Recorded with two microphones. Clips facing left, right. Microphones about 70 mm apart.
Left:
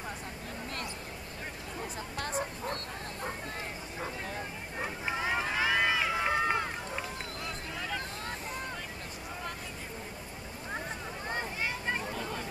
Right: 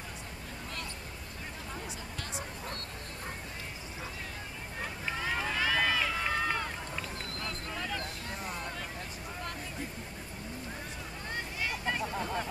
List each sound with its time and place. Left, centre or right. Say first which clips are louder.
2.1 s bow-wow: left 10 dB; left
4.8 s run: left 2 dB; centre
11.3 s a sound: left 1 dB; left